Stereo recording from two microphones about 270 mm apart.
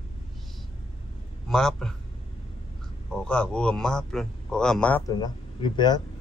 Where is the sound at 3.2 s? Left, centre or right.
Centre.